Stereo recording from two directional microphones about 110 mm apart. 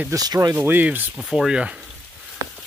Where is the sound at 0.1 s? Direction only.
35° right (ahead or behind).